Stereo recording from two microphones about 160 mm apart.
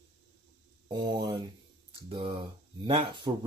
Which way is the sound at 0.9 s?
25° right (ahead or behind).